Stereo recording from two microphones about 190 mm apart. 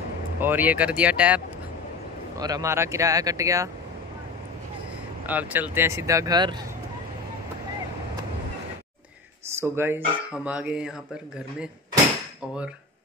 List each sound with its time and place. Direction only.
0.4 s speech: 10° right (ahead or behind)
2.3 s speech: 20° right (ahead or behind)
5.2 s speech: 10° right (ahead or behind)
9.6 s speech: 10° right (ahead or behind)